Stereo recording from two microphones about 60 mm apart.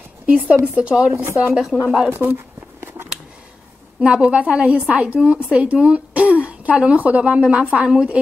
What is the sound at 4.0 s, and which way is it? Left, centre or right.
A woman's voice, centre.